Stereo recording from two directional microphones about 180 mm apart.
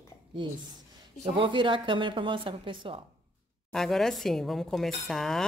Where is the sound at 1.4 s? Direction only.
25° right (ahead or behind).